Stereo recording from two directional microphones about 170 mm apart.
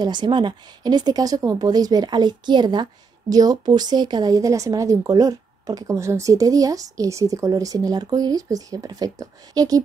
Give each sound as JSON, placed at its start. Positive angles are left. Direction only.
{"t": 0.0, "sound": "speech", "side_deg": -25}